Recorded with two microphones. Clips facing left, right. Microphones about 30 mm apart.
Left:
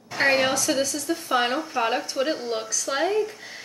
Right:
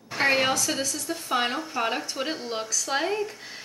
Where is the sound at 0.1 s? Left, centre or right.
Centre.